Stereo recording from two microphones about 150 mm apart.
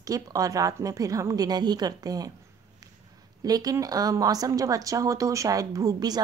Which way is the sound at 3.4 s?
25° right (ahead or behind).